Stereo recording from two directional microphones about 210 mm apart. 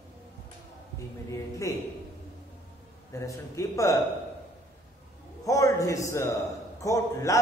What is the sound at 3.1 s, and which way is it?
Speech, 15° left (ahead or behind).